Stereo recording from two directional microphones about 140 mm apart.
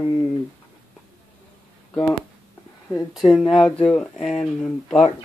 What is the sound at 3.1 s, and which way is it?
Speech, centre (ahead or behind).